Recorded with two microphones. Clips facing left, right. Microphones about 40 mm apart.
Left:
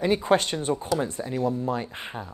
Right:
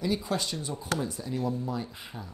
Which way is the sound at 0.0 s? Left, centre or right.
Left.